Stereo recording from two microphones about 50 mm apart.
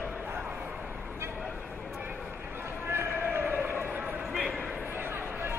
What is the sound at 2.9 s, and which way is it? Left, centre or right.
Basketball bounce, right.